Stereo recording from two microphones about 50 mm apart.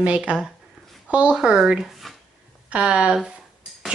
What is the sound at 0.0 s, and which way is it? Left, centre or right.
Speech, right.